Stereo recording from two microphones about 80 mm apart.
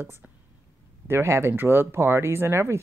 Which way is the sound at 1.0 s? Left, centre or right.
Right.